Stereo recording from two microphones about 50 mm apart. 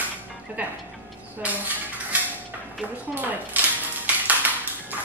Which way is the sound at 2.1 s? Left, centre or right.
Right.